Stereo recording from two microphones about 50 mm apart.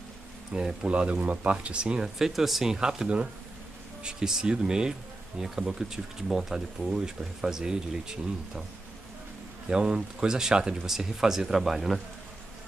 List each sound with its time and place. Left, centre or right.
0.5 s speech: centre
9.7 s speech: centre